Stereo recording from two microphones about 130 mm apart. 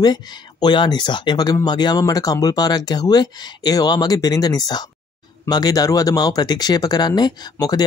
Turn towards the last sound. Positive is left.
turn(degrees=30)  # may be behind; listen again after turning